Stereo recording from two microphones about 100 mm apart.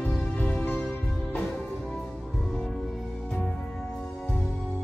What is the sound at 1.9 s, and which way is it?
Music, 5° left (ahead or behind).